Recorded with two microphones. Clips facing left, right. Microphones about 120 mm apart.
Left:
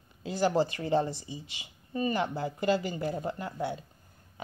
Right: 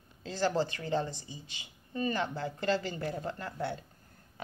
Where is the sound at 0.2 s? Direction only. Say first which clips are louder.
Left 4 dB; 15° left (ahead or behind).